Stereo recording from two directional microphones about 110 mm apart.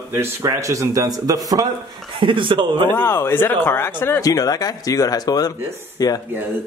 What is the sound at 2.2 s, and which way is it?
Speech, 50° right (ahead or behind).